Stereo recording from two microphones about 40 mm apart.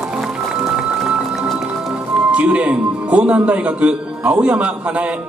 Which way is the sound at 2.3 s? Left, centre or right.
Right.